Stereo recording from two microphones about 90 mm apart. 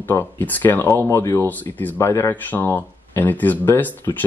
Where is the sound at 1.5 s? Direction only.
20° left (ahead or behind).